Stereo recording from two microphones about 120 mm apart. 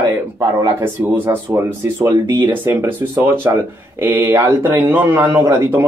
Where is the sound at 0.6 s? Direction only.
20° right (ahead or behind).